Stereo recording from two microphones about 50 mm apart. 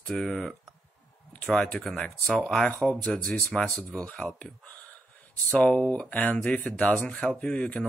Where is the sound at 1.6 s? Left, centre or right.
Centre.